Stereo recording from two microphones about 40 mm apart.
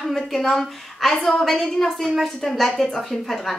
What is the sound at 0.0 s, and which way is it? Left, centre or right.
A woman's voice, centre.